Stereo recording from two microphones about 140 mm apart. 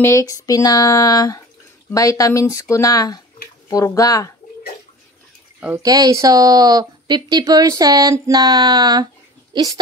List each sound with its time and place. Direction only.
0.0 s speech: 25° left (ahead or behind)
5.8 s speech: 25° right (ahead or behind)